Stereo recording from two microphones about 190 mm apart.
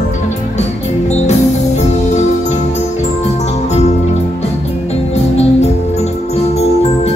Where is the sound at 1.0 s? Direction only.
35° left (ahead or behind).